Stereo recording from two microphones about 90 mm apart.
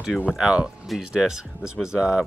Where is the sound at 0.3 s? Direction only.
5° right (ahead or behind).